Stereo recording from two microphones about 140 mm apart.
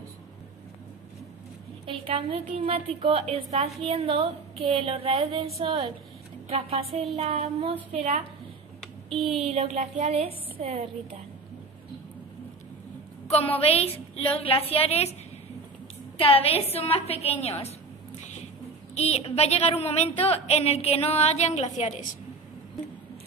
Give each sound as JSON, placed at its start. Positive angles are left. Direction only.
{"t": 1.9, "sound": "a woman's voice", "side_deg": -40}
{"t": 8.8, "sound": "a sound", "side_deg": 0}
{"t": 9.3, "sound": "a woman's voice", "side_deg": -50}
{"t": 13.6, "sound": "a woman's voice", "side_deg": 45}
{"t": 16.2, "sound": "a woman's voice", "side_deg": 45}
{"t": 18.9, "sound": "a woman's voice", "side_deg": 50}